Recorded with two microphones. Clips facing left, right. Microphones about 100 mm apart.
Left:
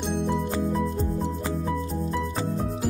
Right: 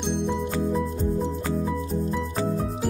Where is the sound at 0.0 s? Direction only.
Centre (ahead or behind).